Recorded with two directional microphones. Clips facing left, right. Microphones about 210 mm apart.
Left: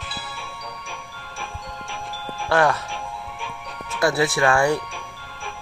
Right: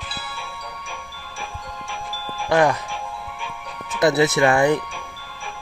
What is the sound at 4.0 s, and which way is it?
Speech, 20° right (ahead or behind).